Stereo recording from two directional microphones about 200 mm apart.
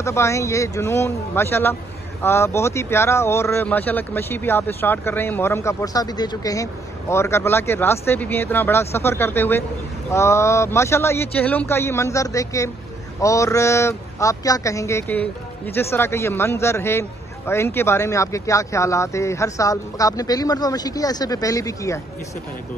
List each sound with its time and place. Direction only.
0.0 s speech: 15° left (ahead or behind)